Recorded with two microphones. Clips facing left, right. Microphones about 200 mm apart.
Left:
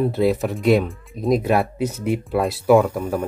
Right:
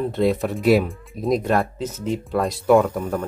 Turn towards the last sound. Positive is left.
turn(degrees=10)  # may be behind; listen again after turning